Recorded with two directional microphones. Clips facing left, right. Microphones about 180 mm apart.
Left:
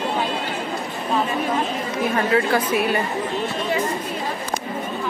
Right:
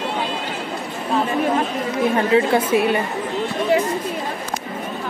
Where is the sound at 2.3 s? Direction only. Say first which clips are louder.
Right 3 dB; 25° right (ahead or behind).